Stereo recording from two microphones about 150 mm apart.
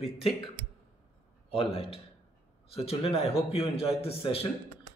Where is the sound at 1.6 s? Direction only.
40° left (ahead or behind).